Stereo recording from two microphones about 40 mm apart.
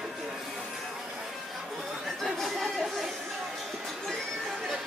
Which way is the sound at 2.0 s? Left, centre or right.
Centre.